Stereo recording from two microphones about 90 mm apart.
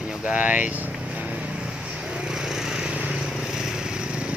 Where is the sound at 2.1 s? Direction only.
5° right (ahead or behind).